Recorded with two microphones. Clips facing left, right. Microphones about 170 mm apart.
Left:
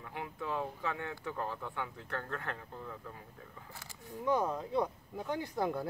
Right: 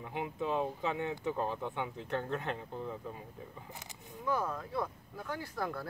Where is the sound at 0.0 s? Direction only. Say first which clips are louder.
Right 5 dB; 20° right (ahead or behind).